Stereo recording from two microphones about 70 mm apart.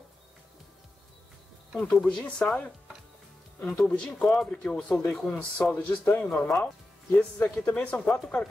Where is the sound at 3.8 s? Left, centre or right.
Centre.